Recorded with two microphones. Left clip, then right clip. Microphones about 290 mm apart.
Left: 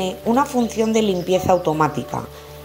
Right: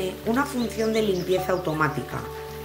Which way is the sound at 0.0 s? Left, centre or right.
Centre.